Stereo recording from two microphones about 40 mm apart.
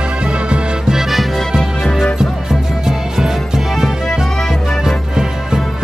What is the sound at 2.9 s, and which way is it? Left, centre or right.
Music, centre.